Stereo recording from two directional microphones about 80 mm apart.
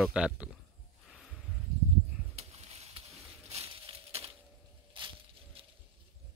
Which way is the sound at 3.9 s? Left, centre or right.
Right.